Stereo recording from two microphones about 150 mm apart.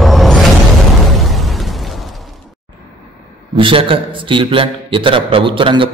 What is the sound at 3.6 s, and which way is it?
A man's voice, 35° right (ahead or behind).